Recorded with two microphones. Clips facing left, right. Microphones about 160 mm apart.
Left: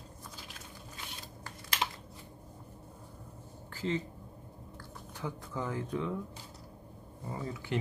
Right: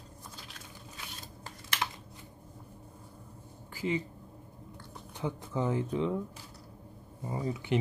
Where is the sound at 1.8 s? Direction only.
20° left (ahead or behind).